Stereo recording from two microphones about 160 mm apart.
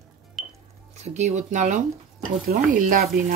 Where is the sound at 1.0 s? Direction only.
45° right (ahead or behind).